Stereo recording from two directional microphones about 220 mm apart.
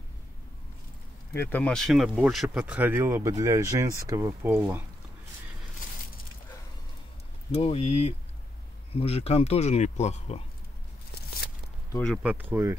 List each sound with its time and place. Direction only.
1.3 s speech: 10° left (ahead or behind); by 4.8 s 10° right (ahead or behind)
7.5 s speech: 25° left (ahead or behind)
12.0 s speech: 5° left (ahead or behind)
12.3 s speech: 10° right (ahead or behind)